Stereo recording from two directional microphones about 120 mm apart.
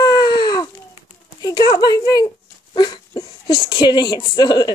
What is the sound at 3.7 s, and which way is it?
Humming, 35° left (ahead or behind).